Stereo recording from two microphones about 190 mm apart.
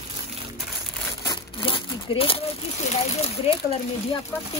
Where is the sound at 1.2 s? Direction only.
30° left (ahead or behind).